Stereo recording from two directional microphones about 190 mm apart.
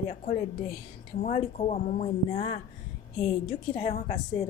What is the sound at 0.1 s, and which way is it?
A woman's voice, 40° left (ahead or behind).